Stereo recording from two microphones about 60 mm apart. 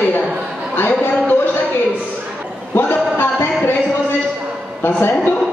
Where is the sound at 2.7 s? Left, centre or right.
Left.